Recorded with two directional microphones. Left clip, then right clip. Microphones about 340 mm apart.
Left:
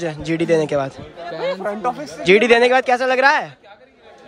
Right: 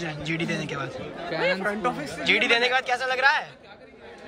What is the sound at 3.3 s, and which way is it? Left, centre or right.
Speech, centre.